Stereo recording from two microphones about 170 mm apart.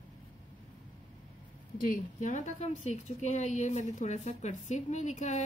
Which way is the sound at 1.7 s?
55° left (ahead or behind).